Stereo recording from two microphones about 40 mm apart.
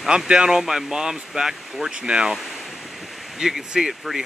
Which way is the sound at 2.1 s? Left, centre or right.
Right.